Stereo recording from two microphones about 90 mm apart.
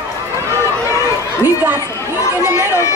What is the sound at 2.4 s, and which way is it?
Chatter, 25° right (ahead or behind).